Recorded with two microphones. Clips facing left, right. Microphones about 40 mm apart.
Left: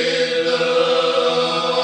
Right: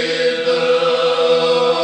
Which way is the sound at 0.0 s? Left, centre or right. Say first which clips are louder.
Right 1 dB; centre.